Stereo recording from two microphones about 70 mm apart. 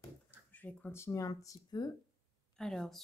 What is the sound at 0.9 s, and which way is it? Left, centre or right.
Speech, left.